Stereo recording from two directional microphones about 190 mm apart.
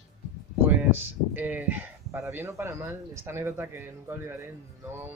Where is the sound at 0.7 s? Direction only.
10° right (ahead or behind).